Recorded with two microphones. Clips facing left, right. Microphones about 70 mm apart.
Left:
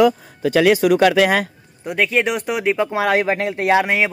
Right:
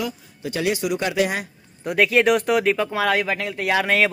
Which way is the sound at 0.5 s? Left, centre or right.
Left.